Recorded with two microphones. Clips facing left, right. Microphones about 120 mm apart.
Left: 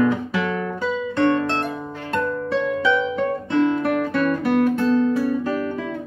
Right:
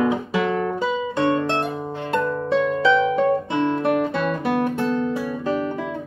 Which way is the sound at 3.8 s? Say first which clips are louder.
Even; 25° right (ahead or behind).